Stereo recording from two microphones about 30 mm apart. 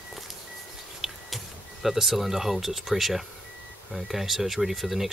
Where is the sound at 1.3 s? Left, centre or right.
Centre.